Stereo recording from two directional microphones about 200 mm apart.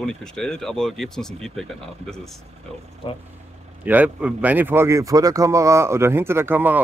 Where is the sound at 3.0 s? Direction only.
25° left (ahead or behind).